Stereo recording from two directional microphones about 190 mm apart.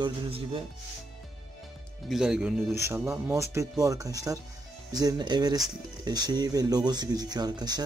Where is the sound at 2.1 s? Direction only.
5° right (ahead or behind).